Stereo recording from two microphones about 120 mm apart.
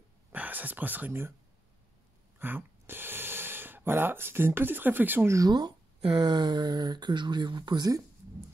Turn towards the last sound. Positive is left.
turn(degrees=-35)  # may be behind; listen again after turning